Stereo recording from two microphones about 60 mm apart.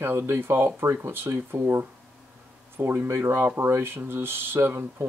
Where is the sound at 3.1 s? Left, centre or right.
Right.